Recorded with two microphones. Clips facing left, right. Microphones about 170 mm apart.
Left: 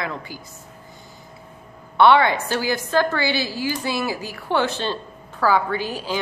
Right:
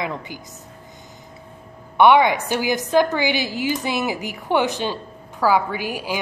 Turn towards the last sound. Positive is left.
turn(degrees=-10)  # may be behind; listen again after turning